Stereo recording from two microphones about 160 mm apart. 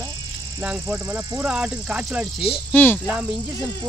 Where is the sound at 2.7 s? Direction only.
10° left (ahead or behind).